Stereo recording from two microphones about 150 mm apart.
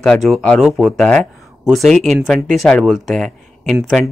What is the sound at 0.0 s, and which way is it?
Speech, centre (ahead or behind).